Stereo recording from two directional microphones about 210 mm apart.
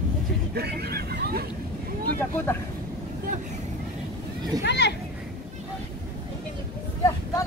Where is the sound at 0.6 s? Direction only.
50° right (ahead or behind).